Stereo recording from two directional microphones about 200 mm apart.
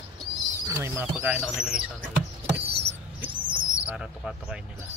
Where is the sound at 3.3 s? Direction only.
25° right (ahead or behind).